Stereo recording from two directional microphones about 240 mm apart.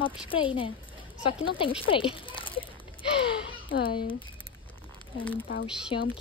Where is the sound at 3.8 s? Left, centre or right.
Left.